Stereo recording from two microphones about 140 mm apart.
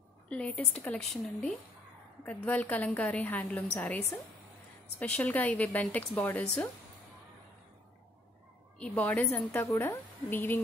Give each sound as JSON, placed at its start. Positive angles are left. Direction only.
{"t": 0.3, "sound": "a woman's voice", "side_deg": 5}
{"t": 8.7, "sound": "a woman's voice", "side_deg": 10}